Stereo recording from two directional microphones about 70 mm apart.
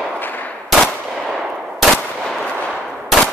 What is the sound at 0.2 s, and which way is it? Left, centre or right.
Gunshot, left.